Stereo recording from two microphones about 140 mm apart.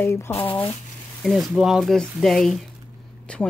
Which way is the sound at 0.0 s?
20° left (ahead or behind).